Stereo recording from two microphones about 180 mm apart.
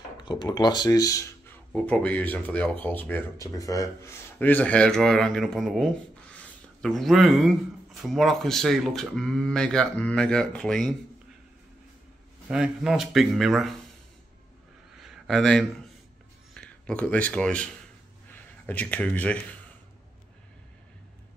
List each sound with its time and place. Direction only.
0.2 s speech: 25° left (ahead or behind)
1.7 s speech: 5° left (ahead or behind)
12.4 s speech: 5° right (ahead or behind)
15.0 s a sound: centre (ahead or behind)
16.5 s a man's voice: 5° left (ahead or behind)